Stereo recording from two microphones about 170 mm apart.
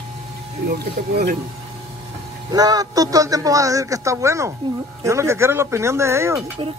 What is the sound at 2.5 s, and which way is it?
A man's voice, 20° right (ahead or behind).